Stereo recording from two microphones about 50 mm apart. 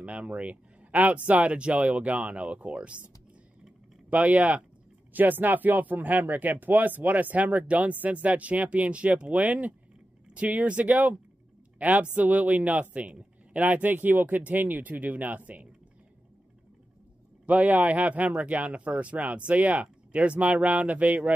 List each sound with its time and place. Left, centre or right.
0.0 s speech: right
4.1 s speech: right
17.5 s speech: right